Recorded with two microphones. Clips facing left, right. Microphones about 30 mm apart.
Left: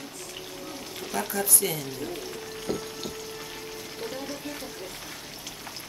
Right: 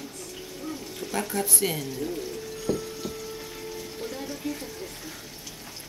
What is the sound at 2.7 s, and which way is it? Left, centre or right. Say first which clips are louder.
Frying: right 3 dB; left.